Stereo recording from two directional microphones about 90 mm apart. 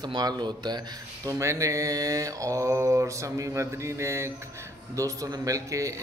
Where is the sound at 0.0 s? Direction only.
50° right (ahead or behind).